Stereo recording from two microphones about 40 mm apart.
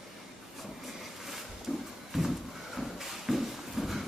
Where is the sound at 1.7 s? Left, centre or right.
Centre.